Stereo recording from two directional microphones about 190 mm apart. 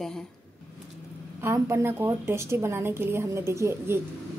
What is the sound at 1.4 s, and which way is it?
A woman's voice, 15° right (ahead or behind).